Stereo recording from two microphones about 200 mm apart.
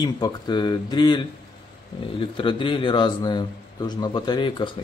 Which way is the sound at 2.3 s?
25° left (ahead or behind).